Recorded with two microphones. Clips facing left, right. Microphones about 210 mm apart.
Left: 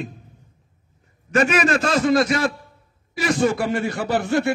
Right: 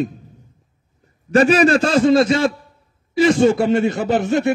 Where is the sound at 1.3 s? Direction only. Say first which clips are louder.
Right 6 dB; 35° right (ahead or behind).